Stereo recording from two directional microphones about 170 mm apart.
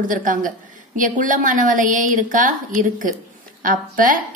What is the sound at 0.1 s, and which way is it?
A woman's voice, 50° right (ahead or behind).